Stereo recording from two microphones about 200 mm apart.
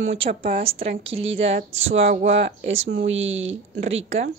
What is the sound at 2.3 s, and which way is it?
Speech, 50° right (ahead or behind).